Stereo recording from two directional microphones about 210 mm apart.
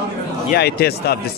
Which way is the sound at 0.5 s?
50° left (ahead or behind).